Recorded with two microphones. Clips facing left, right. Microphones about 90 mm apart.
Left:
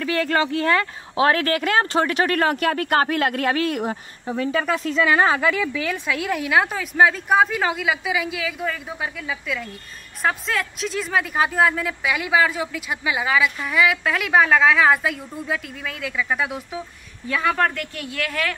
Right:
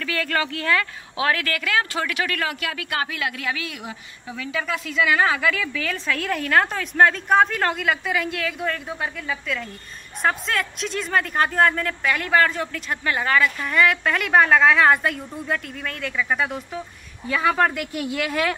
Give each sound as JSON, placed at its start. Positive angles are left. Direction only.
{"t": 0.0, "sound": "a woman's voice", "side_deg": 25}